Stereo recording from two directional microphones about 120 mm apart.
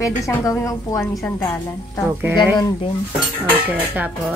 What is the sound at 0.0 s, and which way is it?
A woman's voice, 25° left (ahead or behind).